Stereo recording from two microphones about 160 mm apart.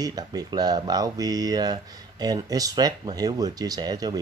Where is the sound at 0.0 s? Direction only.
25° right (ahead or behind).